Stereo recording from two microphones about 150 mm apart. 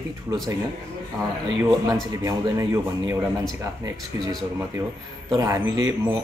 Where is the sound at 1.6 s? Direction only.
20° right (ahead or behind).